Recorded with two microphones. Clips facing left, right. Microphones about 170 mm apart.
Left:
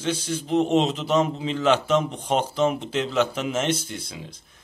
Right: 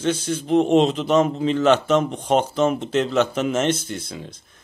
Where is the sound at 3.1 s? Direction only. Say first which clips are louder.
Right 4 dB; 10° left (ahead or behind).